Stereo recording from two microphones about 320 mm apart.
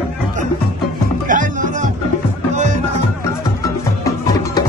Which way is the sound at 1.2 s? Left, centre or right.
Right.